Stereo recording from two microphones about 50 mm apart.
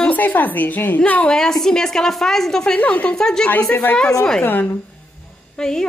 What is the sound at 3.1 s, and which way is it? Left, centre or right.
Speech, centre.